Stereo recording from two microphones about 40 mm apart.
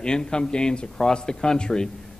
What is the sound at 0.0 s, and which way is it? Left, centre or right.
A man's voice, left.